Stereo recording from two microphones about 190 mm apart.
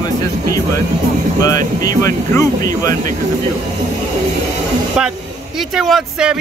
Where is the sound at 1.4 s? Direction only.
20° left (ahead or behind).